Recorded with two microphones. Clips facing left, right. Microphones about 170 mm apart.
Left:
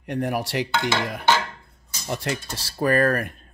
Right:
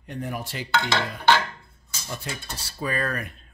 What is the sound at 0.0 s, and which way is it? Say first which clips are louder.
Dishes: left 7 dB; 75° left (ahead or behind).